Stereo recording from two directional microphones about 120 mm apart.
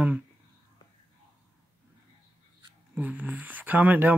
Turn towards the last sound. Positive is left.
turn(degrees=-15)  # may be behind; listen again after turning